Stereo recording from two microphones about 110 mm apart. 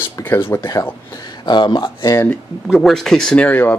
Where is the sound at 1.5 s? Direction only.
45° left (ahead or behind).